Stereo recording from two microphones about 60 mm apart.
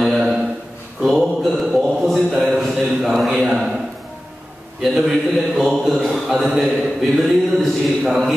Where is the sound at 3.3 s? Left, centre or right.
Right.